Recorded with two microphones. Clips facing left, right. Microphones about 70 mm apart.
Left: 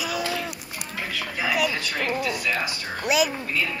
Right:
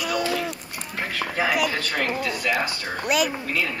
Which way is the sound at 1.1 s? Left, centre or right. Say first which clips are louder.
Right 3 dB; right.